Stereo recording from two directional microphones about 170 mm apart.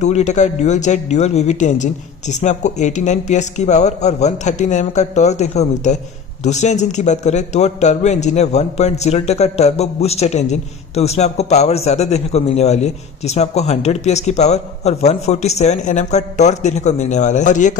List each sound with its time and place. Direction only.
0.0 s a man's voice: 45° left (ahead or behind)